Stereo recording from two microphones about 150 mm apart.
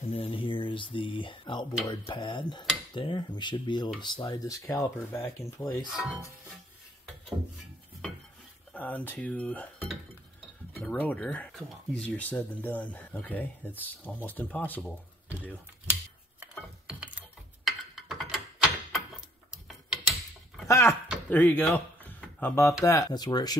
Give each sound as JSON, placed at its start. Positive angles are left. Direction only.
{"t": 0.0, "sound": "a sound", "side_deg": 40}
{"t": 1.9, "sound": "speech", "side_deg": 30}
{"t": 8.7, "sound": "speech", "side_deg": 10}
{"t": 10.8, "sound": "speech", "side_deg": 10}
{"t": 15.9, "sound": "a sound", "side_deg": -10}
{"t": 17.6, "sound": "tick-tock", "side_deg": 0}
{"t": 19.5, "sound": "mechanisms", "side_deg": 0}
{"t": 20.6, "sound": "speech", "side_deg": 20}
{"t": 21.7, "sound": "a sound", "side_deg": 15}
{"t": 22.8, "sound": "speech", "side_deg": 25}